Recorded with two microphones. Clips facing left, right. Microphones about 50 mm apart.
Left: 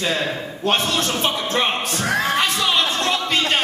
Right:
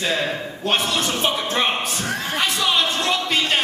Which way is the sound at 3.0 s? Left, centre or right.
Centre.